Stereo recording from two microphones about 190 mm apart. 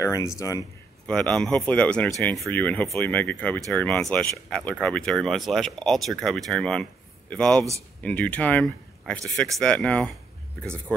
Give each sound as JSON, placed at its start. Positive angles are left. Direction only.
{"t": 0.0, "sound": "speech", "side_deg": 15}
{"t": 1.0, "sound": "speech", "side_deg": 5}